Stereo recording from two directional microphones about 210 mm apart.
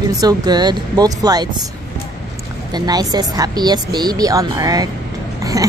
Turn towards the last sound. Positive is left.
turn(degrees=-15)  # may be behind; listen again after turning